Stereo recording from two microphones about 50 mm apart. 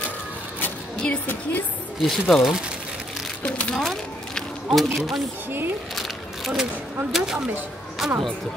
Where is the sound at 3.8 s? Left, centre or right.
Centre.